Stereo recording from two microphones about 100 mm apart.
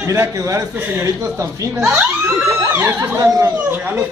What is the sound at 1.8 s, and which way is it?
Speech, 10° right (ahead or behind).